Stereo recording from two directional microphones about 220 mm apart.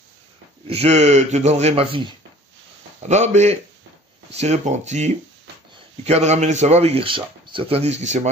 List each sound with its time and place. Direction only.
0.7 s speech: 30° right (ahead or behind)